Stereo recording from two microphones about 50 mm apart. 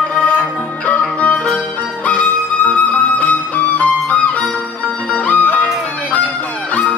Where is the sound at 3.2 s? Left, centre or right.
Left.